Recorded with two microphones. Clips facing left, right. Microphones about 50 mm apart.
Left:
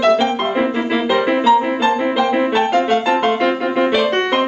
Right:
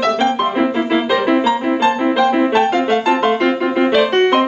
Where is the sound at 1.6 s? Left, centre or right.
Centre.